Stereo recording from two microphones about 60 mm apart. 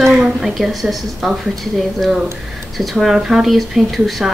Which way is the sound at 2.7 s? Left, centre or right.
Centre.